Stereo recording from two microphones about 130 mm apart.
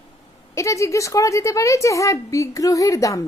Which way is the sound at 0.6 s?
25° left (ahead or behind).